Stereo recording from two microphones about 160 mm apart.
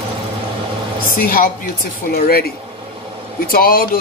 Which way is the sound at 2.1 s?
70° left (ahead or behind).